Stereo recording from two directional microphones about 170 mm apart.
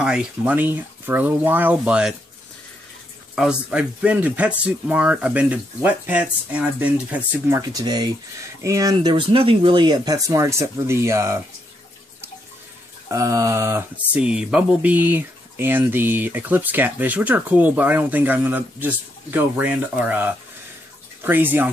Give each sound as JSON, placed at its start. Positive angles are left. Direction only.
{"t": 0.0, "sound": "speech", "side_deg": -5}
{"t": 3.3, "sound": "speech", "side_deg": -5}
{"t": 13.1, "sound": "speech", "side_deg": -20}